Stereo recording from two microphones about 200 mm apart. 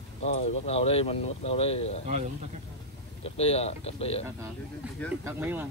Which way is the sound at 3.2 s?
30° left (ahead or behind).